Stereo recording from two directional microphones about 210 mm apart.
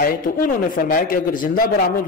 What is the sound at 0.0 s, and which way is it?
A man's voice, 45° left (ahead or behind).